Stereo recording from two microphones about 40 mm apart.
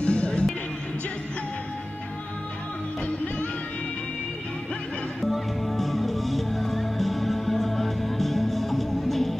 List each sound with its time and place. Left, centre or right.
0.0 s music: left
5.2 s music: centre